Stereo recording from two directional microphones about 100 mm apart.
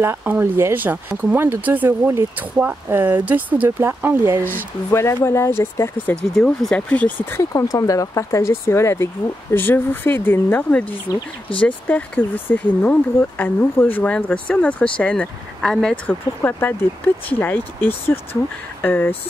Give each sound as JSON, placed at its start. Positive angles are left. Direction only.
{"t": 0.0, "sound": "speech", "side_deg": -20}
{"t": 4.9, "sound": "speech", "side_deg": 25}
{"t": 6.3, "sound": "speech", "side_deg": 5}
{"t": 11.1, "sound": "speech", "side_deg": 35}
{"t": 11.6, "sound": "speech", "side_deg": 15}
{"t": 16.1, "sound": "speech", "side_deg": 20}